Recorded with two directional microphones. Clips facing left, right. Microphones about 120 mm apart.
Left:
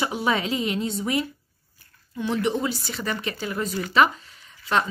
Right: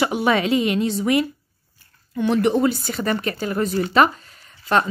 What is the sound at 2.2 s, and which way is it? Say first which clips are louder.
Speech: right 6 dB; 60° right (ahead or behind).